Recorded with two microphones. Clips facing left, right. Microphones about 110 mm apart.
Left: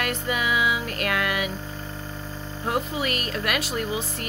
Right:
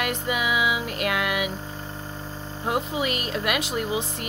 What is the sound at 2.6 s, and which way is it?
Speech, 15° right (ahead or behind).